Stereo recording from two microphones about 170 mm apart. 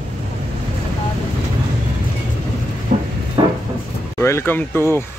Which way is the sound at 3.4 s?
20° right (ahead or behind).